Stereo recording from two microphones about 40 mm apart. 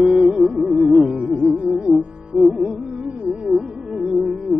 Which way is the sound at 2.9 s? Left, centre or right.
Right.